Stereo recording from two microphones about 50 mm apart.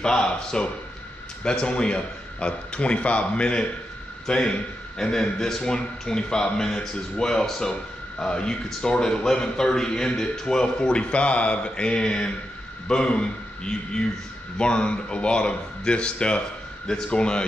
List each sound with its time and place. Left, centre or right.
0.0 s a man's voice: centre